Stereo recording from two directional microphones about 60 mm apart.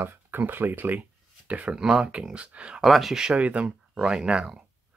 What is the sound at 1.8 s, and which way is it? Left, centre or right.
Speech, centre.